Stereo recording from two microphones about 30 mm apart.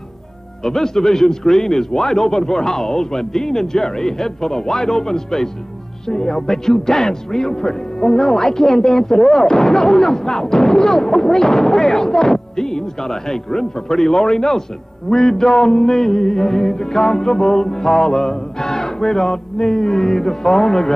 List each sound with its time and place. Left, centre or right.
0.7 s speech: centre